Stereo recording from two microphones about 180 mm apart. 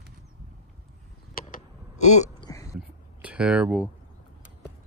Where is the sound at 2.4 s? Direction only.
20° left (ahead or behind).